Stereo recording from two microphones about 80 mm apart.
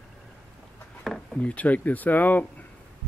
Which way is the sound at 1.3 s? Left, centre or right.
Centre.